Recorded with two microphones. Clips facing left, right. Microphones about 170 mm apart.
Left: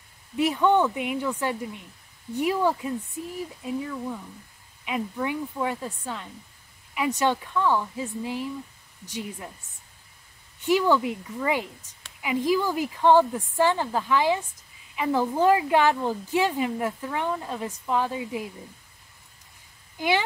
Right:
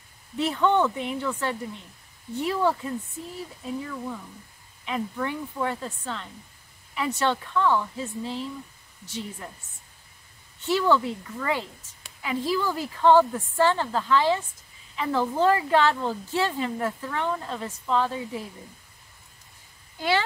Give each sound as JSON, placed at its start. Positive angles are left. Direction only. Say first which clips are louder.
{"t": 0.4, "sound": "a woman's voice", "louder": "left 1 dB", "side_deg": 10}
{"t": 10.6, "sound": "a woman's voice", "louder": "left 1 dB", "side_deg": 15}
{"t": 20.0, "sound": "a woman's voice", "louder": "even", "side_deg": 15}